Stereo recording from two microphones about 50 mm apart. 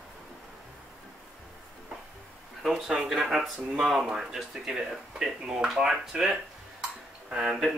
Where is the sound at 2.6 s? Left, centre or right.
Centre.